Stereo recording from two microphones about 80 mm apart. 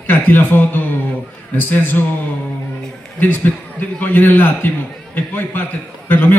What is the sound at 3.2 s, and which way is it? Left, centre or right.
A man's voice, left.